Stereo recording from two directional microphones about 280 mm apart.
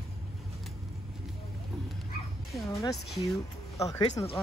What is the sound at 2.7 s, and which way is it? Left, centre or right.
Speech, centre.